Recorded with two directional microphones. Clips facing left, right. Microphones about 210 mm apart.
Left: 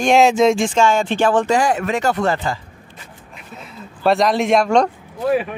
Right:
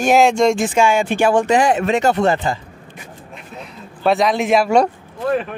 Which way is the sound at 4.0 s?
Centre (ahead or behind).